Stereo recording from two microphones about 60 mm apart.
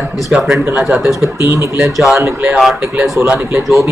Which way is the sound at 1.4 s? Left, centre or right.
Right.